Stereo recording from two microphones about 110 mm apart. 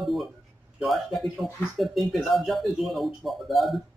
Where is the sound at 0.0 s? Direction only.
Centre (ahead or behind).